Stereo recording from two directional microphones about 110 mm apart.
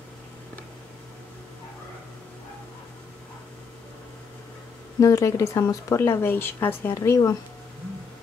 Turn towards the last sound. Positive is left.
turn(degrees=30)  # may be behind; listen again after turning